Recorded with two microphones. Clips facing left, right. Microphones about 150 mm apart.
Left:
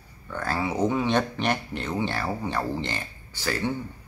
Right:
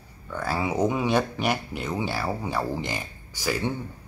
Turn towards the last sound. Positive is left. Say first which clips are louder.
# right 1 dB
turn(degrees=-10)  # may be behind; listen again after turning